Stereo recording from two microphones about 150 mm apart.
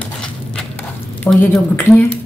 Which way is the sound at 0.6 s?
10° left (ahead or behind).